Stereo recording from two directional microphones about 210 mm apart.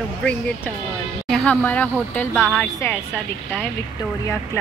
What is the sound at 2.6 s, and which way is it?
Speech, 10° left (ahead or behind).